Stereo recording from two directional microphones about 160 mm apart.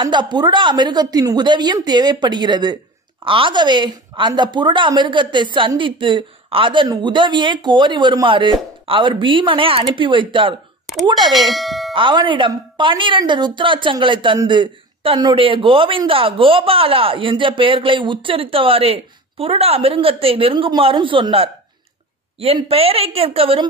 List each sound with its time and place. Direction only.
0.0 s a woman's voice: 30° right (ahead or behind)
11.3 s bell: centre (ahead or behind)
11.9 s a woman's voice: 30° right (ahead or behind)